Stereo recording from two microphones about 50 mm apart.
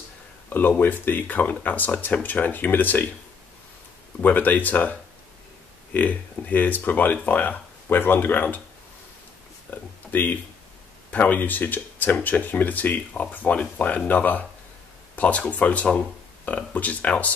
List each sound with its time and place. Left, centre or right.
0.5 s speech: left
4.2 s speech: left
5.9 s speech: left
9.7 s speech: left